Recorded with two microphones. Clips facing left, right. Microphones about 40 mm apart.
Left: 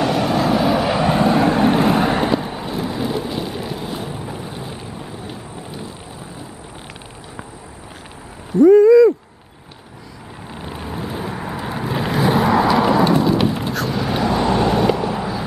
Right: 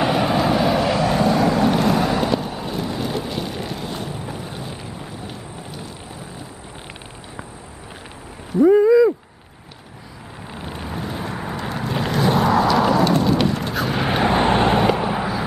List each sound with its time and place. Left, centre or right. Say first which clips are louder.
0.0 s vehicle: left 1 dB; centre
0.9 s boat: left 2 dB; left
2.3 s vehicle: left 2 dB; centre
8.5 s a sound: left 4 dB; centre
10.6 s vehicle: left 1 dB; centre
13.2 s rain: left 2 dB; centre
13.9 s vehicle: right 2 dB; right
15.0 s vehicle: even; right